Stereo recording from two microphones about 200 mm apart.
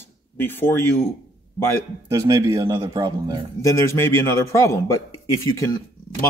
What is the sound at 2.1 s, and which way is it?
A man's voice, 15° right (ahead or behind).